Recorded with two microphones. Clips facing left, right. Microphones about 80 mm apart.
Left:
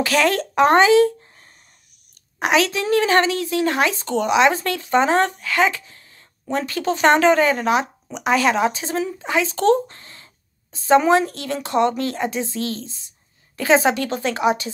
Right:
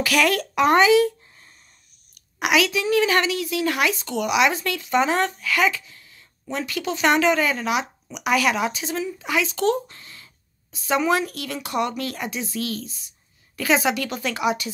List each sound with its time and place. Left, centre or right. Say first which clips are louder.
0.0 s a woman's voice: left 2 dB; left